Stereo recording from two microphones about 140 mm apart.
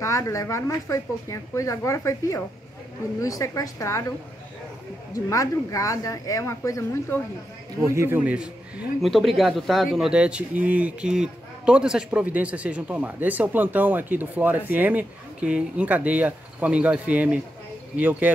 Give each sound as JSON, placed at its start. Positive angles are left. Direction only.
{"t": 0.0, "sound": "speech", "side_deg": 20}
{"t": 5.1, "sound": "speech", "side_deg": 25}
{"t": 7.9, "sound": "a man's voice", "side_deg": -15}